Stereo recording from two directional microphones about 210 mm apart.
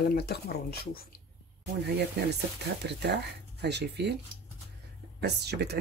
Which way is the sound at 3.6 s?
55° right (ahead or behind).